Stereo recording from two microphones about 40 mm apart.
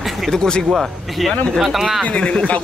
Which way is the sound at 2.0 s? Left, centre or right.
Left.